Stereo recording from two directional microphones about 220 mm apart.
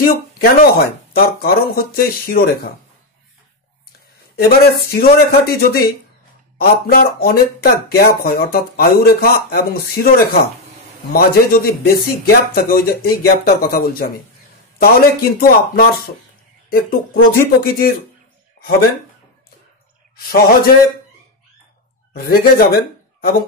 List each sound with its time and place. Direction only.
0.0 s speech: 40° left (ahead or behind)
4.4 s speech: 45° left (ahead or behind)
6.6 s speech: 45° left (ahead or behind)
20.2 s a man's voice: 40° left (ahead or behind)
22.1 s speech: 40° left (ahead or behind)